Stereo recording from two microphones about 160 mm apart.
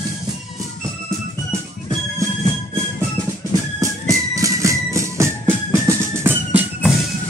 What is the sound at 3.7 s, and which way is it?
Music, 20° right (ahead or behind).